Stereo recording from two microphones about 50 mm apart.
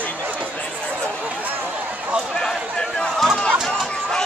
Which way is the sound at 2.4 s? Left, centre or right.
Centre.